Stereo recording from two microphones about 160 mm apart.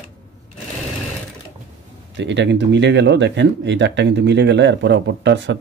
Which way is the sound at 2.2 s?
90° right.